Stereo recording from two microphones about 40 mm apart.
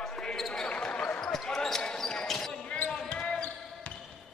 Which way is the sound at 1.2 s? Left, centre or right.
Centre.